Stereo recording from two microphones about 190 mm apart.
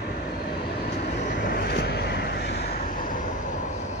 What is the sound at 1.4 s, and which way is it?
Vehicle, 55° left (ahead or behind).